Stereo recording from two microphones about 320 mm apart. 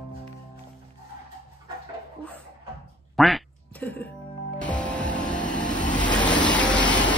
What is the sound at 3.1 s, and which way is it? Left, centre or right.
Quack, centre.